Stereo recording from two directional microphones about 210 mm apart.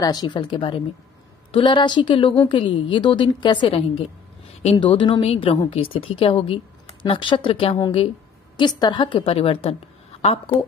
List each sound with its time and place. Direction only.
0.0 s speech: 20° left (ahead or behind)